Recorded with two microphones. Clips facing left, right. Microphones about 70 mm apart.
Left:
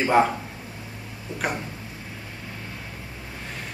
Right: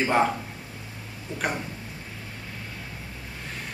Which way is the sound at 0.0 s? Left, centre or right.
Centre.